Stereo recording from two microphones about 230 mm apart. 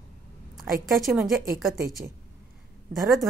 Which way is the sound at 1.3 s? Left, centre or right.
Right.